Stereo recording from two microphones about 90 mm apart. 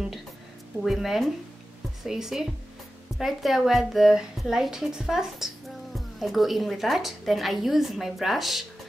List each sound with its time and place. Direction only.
0.8 s speech: centre (ahead or behind)